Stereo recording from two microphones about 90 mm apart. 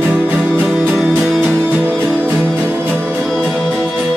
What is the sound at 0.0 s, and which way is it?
Music, 20° right (ahead or behind).